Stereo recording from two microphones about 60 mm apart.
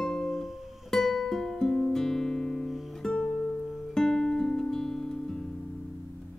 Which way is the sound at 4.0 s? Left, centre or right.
Centre.